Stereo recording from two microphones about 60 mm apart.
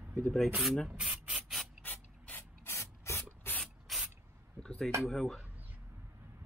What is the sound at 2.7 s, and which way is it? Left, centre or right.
Spray, left.